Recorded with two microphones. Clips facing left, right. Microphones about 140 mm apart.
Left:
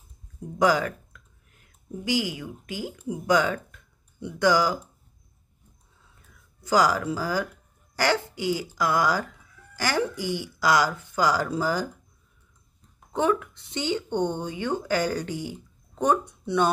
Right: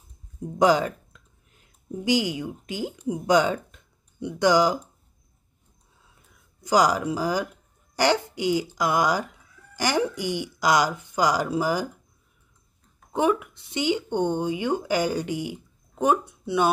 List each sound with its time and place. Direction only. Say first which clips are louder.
0.6 s speech: right 2 dB; 20° right (ahead or behind)
6.6 s speech: right 1 dB; 15° right (ahead or behind)
13.1 s speech: right 1 dB; 15° right (ahead or behind)